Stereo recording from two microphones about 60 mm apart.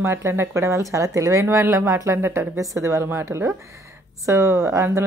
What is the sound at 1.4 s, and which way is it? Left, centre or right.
Speech, right.